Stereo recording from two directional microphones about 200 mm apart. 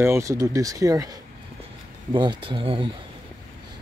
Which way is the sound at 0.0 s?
15° right (ahead or behind).